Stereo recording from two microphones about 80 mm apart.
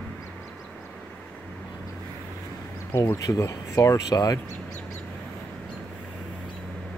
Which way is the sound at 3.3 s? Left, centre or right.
Left.